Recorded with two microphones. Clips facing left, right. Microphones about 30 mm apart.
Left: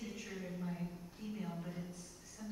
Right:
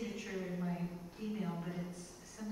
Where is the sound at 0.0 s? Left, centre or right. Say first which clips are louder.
Right 4 dB; centre.